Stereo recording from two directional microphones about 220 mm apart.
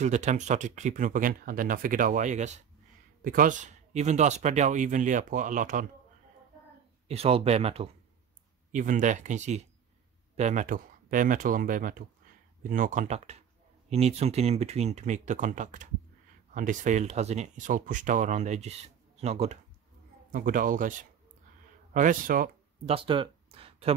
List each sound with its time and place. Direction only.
0.0 s speech: 30° right (ahead or behind)
7.1 s speech: 25° right (ahead or behind)
21.9 s speech: 35° right (ahead or behind)
22.9 s a sound: 25° right (ahead or behind)